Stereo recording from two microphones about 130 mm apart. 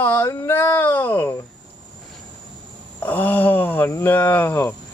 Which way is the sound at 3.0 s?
15° left (ahead or behind).